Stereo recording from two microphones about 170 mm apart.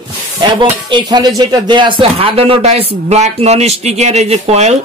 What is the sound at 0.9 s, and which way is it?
Speech, 25° right (ahead or behind).